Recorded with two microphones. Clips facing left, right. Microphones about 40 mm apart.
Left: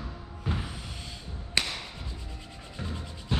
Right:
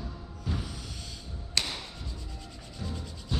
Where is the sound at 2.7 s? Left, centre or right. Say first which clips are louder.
Left 1 dB; left.